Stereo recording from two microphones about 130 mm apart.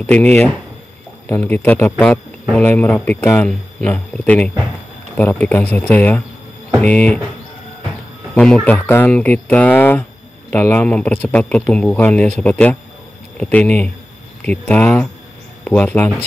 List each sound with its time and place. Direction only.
0.0 s speech: 15° left (ahead or behind)
3.4 s speech: 10° left (ahead or behind)
8.4 s speech: 5° left (ahead or behind)